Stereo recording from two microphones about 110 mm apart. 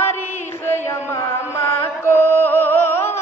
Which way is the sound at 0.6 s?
20° left (ahead or behind).